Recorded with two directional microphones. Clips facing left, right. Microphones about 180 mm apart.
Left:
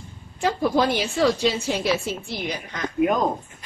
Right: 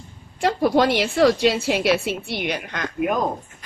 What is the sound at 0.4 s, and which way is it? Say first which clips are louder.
A woman's voice: right 3 dB; 75° right (ahead or behind).